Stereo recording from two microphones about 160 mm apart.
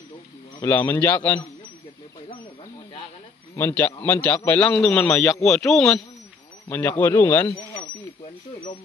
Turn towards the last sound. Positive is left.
turn(degrees=10)  # may be behind; listen again after turning